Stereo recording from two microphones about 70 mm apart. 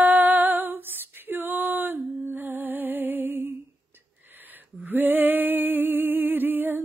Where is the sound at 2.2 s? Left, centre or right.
Right.